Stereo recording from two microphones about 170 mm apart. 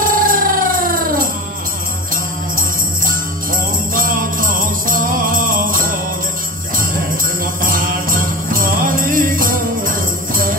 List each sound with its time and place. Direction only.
0.0 s music: 55° right (ahead or behind)
3.9 s jingle bell: 55° right (ahead or behind)
7.6 s music: 55° right (ahead or behind)